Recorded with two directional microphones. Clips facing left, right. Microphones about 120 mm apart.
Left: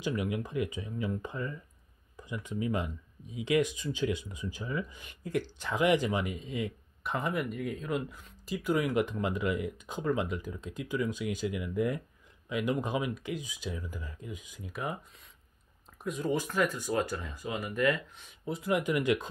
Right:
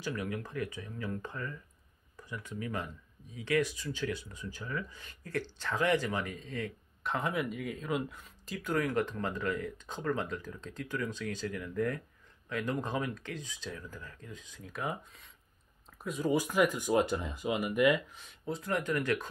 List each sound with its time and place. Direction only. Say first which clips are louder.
0.0 s speech: left 4 dB; 15° left (ahead or behind)
16.0 s speech: right 1 dB; centre (ahead or behind)
18.1 s speech: left 1 dB; centre (ahead or behind)